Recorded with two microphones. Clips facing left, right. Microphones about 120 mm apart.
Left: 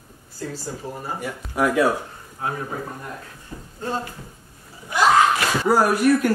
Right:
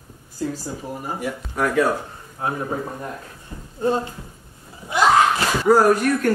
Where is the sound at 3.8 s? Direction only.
20° right (ahead or behind).